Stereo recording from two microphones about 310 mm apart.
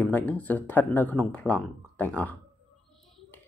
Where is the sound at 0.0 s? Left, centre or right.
Centre.